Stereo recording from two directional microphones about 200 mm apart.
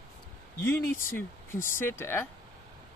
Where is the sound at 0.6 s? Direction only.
10° left (ahead or behind).